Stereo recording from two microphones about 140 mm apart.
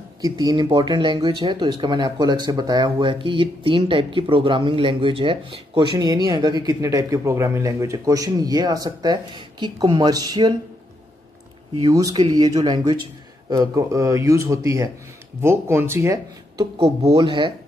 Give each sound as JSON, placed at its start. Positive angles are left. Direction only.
{"t": 0.2, "sound": "speech", "side_deg": -25}
{"t": 5.9, "sound": "speech", "side_deg": -30}
{"t": 11.8, "sound": "speech", "side_deg": -25}
{"t": 16.7, "sound": "speech", "side_deg": -45}